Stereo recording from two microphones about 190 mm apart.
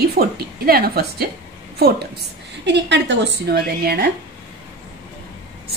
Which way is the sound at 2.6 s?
65° right (ahead or behind).